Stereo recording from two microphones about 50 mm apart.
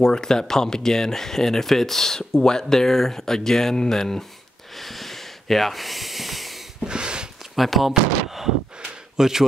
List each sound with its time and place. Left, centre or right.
0.0 s speech: centre
4.7 s snort: centre
6.8 s a sound: centre
7.5 s speech: centre